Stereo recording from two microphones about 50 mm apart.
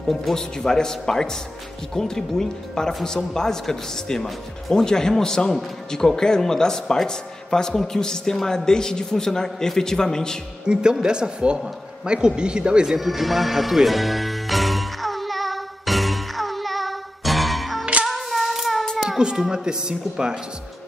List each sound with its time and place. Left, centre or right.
0.1 s a man's voice: centre
0.6 s speech: centre
10.7 s speech: centre
13.0 s music: centre
18.0 s humming: centre
19.0 s speech: centre